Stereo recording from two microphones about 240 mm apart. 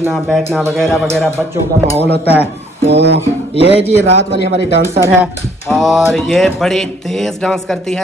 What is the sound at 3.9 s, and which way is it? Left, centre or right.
Speech, left.